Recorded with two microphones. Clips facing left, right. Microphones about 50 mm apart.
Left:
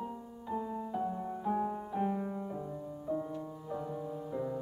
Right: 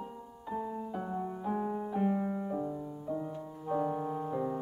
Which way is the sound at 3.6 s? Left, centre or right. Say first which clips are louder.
Right 10 dB; right.